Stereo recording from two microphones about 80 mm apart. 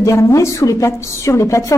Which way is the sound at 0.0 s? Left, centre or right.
Left.